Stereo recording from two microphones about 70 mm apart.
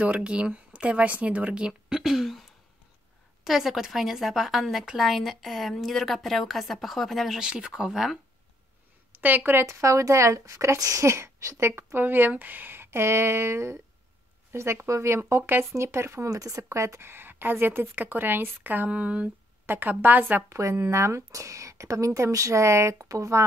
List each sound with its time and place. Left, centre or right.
0.0 s speech: centre
3.4 s a woman's voice: centre
9.2 s speech: right
16.3 s speech: right
20.4 s a woman's voice: right